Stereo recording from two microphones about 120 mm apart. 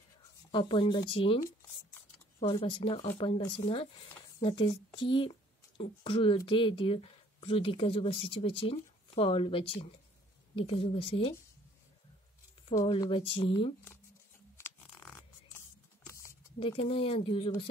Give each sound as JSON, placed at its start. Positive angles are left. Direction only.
{"t": 0.5, "sound": "speech", "side_deg": 45}
{"t": 2.4, "sound": "speech", "side_deg": 45}
{"t": 13.1, "sound": "speech", "side_deg": 50}
{"t": 14.6, "sound": "a sound", "side_deg": 15}
{"t": 16.5, "sound": "speech", "side_deg": 50}